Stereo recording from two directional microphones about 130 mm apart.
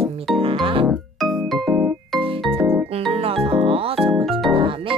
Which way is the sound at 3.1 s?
50° right (ahead or behind).